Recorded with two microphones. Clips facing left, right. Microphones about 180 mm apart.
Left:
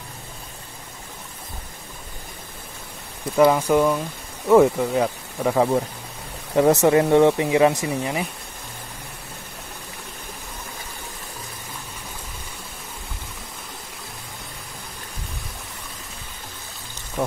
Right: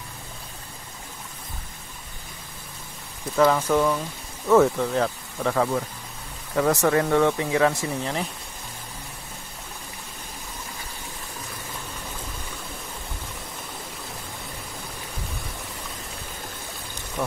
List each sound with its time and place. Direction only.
3.3 s speech: 10° left (ahead or behind)